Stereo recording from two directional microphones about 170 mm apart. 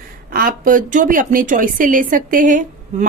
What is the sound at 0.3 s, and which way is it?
A woman's voice, 55° right (ahead or behind).